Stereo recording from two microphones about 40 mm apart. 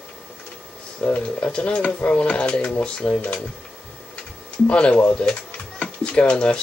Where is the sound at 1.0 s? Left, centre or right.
Left.